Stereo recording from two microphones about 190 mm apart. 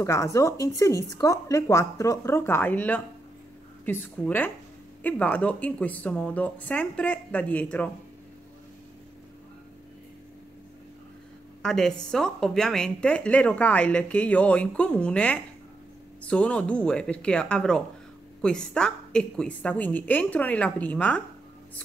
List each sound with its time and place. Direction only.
0.0 s a woman's voice: 15° left (ahead or behind)
11.6 s a woman's voice: 5° left (ahead or behind)